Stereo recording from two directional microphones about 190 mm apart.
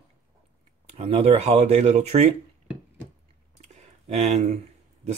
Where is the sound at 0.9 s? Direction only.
30° right (ahead or behind).